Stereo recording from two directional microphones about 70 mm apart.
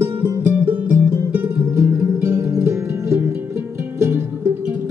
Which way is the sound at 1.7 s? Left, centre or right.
Right.